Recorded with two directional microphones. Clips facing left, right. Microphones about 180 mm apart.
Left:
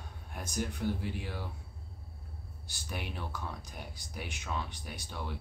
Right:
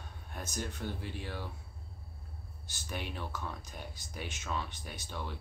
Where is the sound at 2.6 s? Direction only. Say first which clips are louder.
Even; 10° left (ahead or behind).